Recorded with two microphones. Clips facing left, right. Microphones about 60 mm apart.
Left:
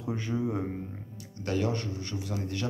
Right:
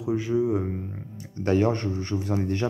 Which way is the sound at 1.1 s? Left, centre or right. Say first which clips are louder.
Right 8 dB; right.